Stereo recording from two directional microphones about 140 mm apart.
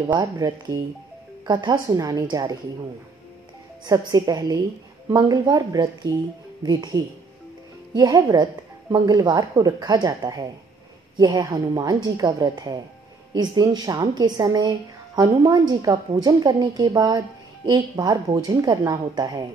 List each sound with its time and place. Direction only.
0.1 s a woman's voice: 30° right (ahead or behind)
3.8 s a woman's voice: 25° right (ahead or behind)